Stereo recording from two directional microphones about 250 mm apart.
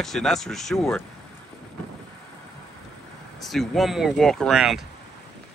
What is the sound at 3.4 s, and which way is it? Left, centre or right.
Speech, centre.